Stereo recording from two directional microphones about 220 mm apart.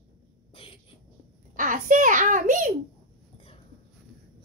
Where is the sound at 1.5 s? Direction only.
35° right (ahead or behind).